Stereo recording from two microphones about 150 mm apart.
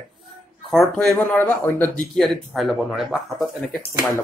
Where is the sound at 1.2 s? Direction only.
15° left (ahead or behind).